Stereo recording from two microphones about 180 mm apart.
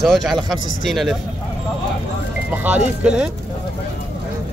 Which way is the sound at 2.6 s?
5° right (ahead or behind).